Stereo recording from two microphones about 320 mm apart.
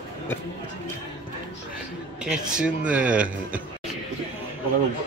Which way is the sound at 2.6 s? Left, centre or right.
Centre.